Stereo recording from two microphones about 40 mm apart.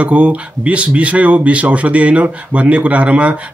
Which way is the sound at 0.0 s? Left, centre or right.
Right.